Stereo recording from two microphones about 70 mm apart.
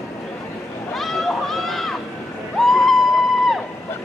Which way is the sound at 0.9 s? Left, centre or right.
Centre.